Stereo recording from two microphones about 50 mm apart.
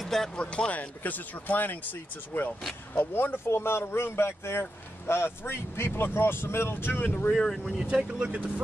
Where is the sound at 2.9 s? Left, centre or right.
Left.